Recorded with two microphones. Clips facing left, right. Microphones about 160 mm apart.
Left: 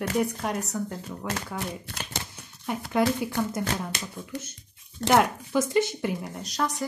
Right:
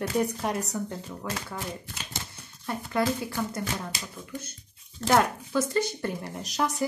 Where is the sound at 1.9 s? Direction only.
70° left (ahead or behind).